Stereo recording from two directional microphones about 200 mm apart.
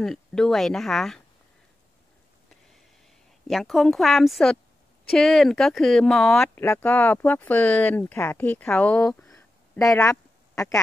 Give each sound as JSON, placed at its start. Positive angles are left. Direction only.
{"t": 0.0, "sound": "speech", "side_deg": 5}
{"t": 3.4, "sound": "speech", "side_deg": 0}
{"t": 10.0, "sound": "a sound", "side_deg": 15}